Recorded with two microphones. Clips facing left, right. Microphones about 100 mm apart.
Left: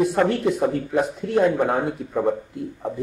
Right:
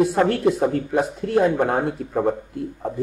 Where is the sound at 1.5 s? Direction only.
50° right (ahead or behind).